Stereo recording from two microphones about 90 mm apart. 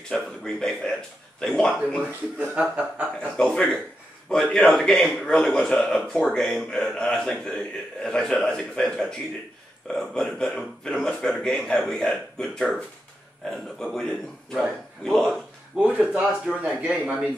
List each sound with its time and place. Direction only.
0.1 s a man's voice: 5° left (ahead or behind)
2.0 s speech: 15° right (ahead or behind)
3.2 s a man's voice: 10° left (ahead or behind)
15.8 s speech: 15° right (ahead or behind)